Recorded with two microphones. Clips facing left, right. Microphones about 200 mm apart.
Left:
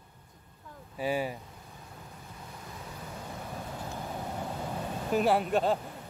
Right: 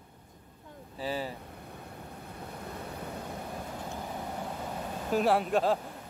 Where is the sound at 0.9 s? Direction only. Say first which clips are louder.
Left 4 dB; 15° left (ahead or behind).